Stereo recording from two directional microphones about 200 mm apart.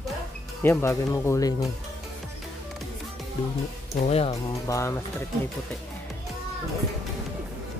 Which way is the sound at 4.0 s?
30° left (ahead or behind).